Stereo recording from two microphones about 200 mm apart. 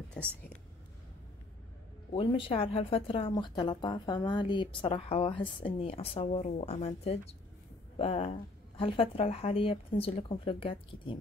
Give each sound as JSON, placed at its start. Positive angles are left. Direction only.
{"t": 0.2, "sound": "speech", "side_deg": 5}
{"t": 2.1, "sound": "speech", "side_deg": 25}
{"t": 8.0, "sound": "speech", "side_deg": 30}